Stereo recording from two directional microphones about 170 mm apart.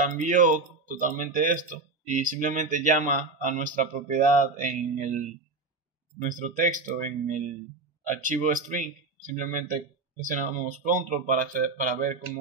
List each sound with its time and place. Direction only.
0.0 s speech: 50° right (ahead or behind)
6.2 s speech: 50° right (ahead or behind)